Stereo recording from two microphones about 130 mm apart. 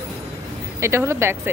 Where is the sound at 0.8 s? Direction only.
20° right (ahead or behind).